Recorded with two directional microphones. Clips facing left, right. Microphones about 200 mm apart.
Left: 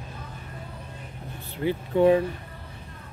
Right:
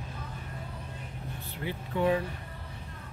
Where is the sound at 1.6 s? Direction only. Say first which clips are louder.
Left 9 dB; 30° left (ahead or behind).